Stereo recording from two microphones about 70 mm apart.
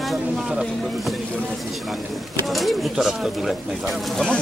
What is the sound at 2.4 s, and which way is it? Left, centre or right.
Speech, centre.